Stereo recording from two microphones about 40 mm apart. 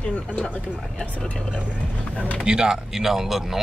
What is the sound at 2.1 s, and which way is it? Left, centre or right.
Speech, left.